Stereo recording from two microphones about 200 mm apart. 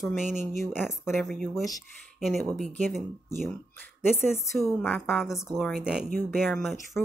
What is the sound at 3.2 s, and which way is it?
Speech, 10° left (ahead or behind).